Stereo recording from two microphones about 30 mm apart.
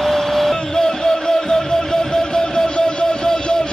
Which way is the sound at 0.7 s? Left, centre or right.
Left.